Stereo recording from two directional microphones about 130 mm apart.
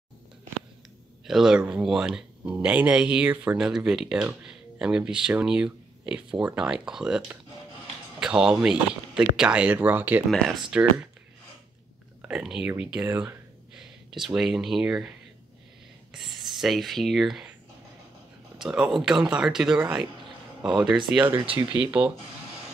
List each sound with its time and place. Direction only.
1.2 s speech: 5° right (ahead or behind)
12.2 s speech: 5° right (ahead or behind)
13.7 s speech: 5° right (ahead or behind)
18.6 s speech: 5° right (ahead or behind)
20.2 s a sound: 35° right (ahead or behind)
20.8 s speech: 5° right (ahead or behind)
21.2 s speech: 20° right (ahead or behind)